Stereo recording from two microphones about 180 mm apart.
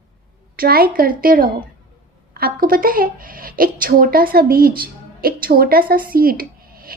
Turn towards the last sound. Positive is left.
turn(degrees=-55)  # may be behind; listen again after turning